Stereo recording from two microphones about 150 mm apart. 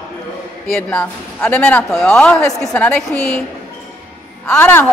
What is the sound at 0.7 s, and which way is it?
A man's voice, 10° left (ahead or behind).